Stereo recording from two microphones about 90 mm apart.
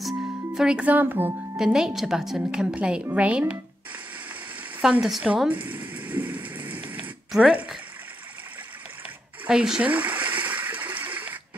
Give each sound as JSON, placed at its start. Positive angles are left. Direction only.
{"t": 0.6, "sound": "speech", "side_deg": -10}
{"t": 1.6, "sound": "a woman's voice", "side_deg": -5}
{"t": 5.0, "sound": "speech", "side_deg": -5}
{"t": 5.5, "sound": "rain", "side_deg": -20}
{"t": 7.4, "sound": "a woman's voice", "side_deg": -5}
{"t": 9.5, "sound": "a sound", "side_deg": -5}